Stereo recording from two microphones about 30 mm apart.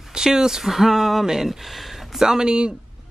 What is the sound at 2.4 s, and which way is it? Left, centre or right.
Speech, right.